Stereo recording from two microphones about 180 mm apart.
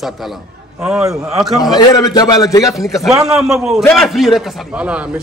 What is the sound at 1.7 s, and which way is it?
Speech, 20° left (ahead or behind).